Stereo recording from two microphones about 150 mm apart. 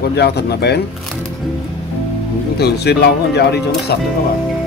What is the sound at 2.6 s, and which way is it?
Speech, 90° left.